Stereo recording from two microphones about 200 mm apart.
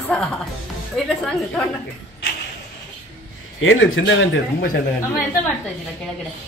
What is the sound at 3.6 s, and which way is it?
A man's voice, 80° left.